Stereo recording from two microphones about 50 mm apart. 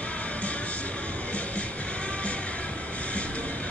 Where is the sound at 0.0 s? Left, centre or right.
Left.